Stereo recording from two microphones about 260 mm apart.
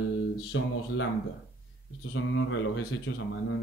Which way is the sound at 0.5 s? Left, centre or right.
Left.